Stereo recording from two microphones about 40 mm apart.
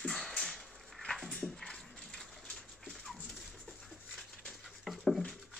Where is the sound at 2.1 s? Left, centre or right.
Centre.